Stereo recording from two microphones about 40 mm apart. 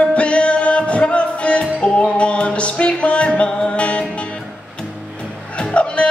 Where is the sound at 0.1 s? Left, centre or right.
Left.